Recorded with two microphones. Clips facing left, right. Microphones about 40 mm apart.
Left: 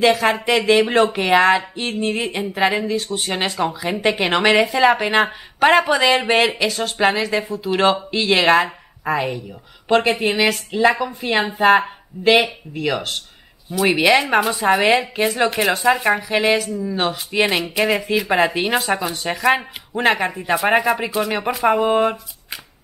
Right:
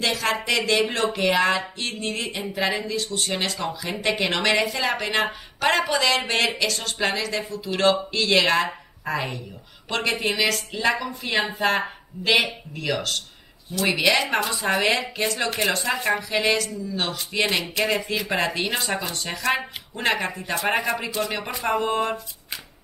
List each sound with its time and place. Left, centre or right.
0.0 s speech: centre
12.9 s speech: left
14.2 s speech: centre